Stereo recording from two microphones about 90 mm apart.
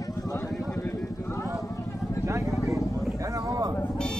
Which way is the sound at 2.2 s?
35° right (ahead or behind).